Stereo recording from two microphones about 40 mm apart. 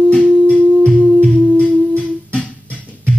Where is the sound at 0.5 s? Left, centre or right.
Left.